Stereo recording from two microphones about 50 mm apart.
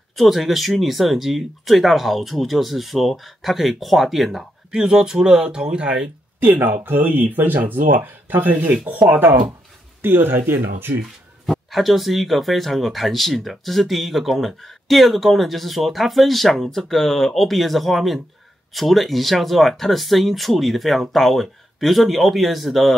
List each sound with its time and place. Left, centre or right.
0.1 s speech: centre
4.6 s speech: centre
6.4 s speech: right
11.7 s speech: centre